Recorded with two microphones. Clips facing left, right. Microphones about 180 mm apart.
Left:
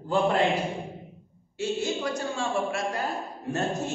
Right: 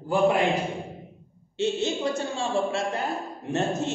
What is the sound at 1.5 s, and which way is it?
A man's voice, 25° right (ahead or behind).